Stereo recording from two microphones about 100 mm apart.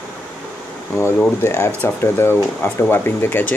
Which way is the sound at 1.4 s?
30° left (ahead or behind).